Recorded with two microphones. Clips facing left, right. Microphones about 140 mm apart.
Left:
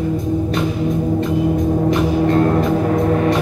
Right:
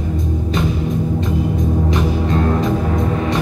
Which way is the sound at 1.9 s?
55° left (ahead or behind).